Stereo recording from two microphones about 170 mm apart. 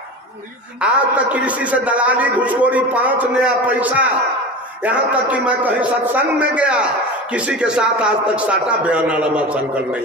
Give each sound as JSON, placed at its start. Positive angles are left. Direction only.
{"t": 0.7, "sound": "a man's voice", "side_deg": -5}